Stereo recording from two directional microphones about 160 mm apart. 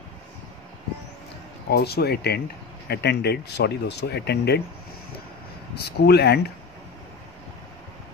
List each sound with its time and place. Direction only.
1.7 s speech: 80° left
5.8 s speech: 85° left